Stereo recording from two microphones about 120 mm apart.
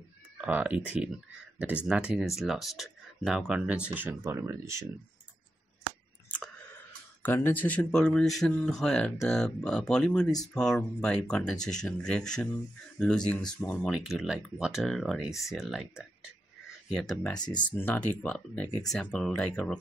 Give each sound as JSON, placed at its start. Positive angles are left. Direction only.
{"t": 0.4, "sound": "speech", "side_deg": -10}
{"t": 6.2, "sound": "clicking", "side_deg": 10}
{"t": 7.2, "sound": "speech", "side_deg": 20}
{"t": 13.9, "sound": "speech", "side_deg": 0}
{"t": 17.1, "sound": "speech", "side_deg": 5}
{"t": 17.4, "sound": "speech", "side_deg": 35}
{"t": 17.7, "sound": "speech", "side_deg": 15}